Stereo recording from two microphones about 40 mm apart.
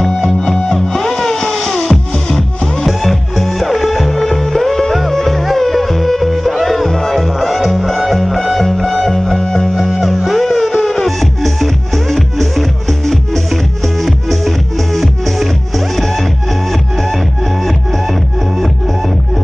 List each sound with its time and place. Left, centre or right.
0.0 s music: centre
9.4 s music: centre
9.8 s music: centre